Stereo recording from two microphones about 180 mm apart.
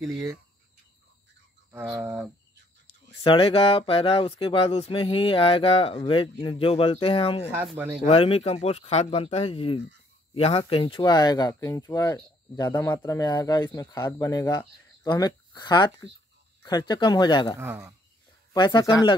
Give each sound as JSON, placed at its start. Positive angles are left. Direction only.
{"t": 0.1, "sound": "speech", "side_deg": -15}
{"t": 1.7, "sound": "cricket", "side_deg": -15}
{"t": 3.3, "sound": "speech", "side_deg": 30}
{"t": 7.6, "sound": "speech", "side_deg": -10}
{"t": 8.0, "sound": "speech", "side_deg": 30}
{"t": 17.6, "sound": "speech", "side_deg": -10}
{"t": 18.5, "sound": "speech", "side_deg": 25}